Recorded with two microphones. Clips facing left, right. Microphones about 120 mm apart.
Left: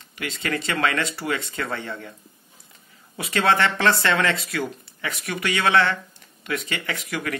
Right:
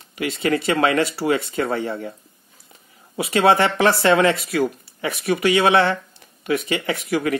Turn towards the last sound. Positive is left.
turn(degrees=-25)  # may be behind; listen again after turning